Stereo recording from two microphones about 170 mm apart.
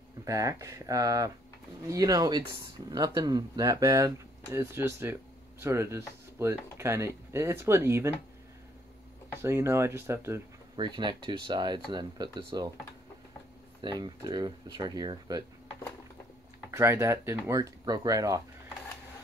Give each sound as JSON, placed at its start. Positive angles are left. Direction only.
{"t": 0.2, "sound": "speech", "side_deg": -20}
{"t": 9.4, "sound": "speech", "side_deg": -15}
{"t": 13.7, "sound": "speech", "side_deg": -25}
{"t": 16.7, "sound": "speech", "side_deg": -15}